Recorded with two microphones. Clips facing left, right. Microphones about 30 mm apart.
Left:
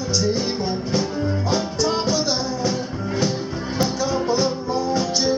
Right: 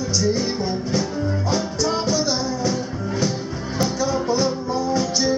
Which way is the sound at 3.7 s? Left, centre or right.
Centre.